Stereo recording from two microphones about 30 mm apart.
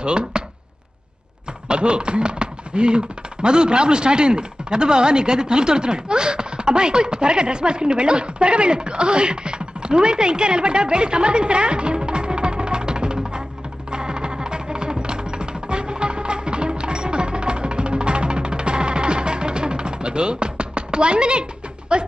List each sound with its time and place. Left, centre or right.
0.0 s speech: right
1.7 s chopping: right
3.4 s speech: right
13.8 s music: right